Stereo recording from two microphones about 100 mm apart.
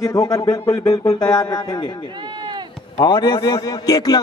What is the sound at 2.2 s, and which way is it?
Chop, 50° right (ahead or behind).